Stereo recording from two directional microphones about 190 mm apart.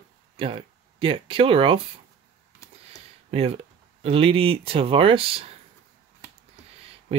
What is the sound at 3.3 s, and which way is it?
Speech, 30° right (ahead or behind).